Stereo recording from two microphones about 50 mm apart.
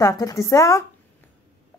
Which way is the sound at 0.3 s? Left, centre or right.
Left.